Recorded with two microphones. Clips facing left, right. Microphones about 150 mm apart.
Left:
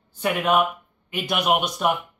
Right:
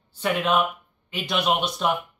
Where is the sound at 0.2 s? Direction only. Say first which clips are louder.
Left 2 dB; 10° left (ahead or behind).